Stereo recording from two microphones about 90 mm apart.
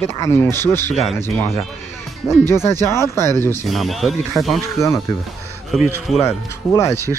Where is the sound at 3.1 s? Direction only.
30° left (ahead or behind).